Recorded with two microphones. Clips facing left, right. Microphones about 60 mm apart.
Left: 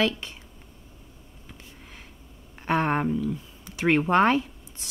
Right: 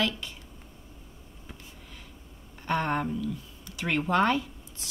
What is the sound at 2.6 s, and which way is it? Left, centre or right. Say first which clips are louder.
Speech: left 4 dB; left.